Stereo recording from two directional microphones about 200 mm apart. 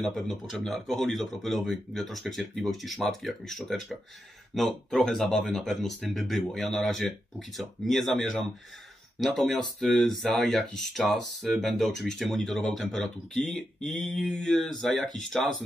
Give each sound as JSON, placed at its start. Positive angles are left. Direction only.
{"t": 0.0, "sound": "speech", "side_deg": 0}